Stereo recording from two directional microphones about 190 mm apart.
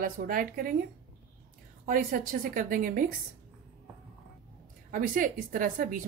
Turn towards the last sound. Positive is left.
turn(degrees=-45)  # may be behind; listen again after turning